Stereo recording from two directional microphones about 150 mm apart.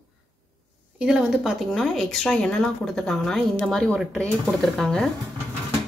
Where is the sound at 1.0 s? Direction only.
5° right (ahead or behind).